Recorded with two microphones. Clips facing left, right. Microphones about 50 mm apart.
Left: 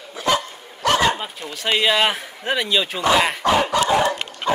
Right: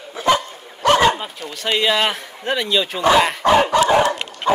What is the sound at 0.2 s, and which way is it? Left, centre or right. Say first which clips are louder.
Dog: right 4 dB; right.